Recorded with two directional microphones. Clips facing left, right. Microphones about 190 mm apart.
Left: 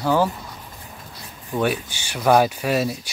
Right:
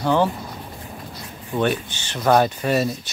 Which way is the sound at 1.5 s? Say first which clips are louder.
Right 1 dB; 5° left (ahead or behind).